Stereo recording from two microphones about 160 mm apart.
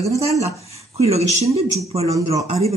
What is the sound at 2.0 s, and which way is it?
Speech, 20° right (ahead or behind).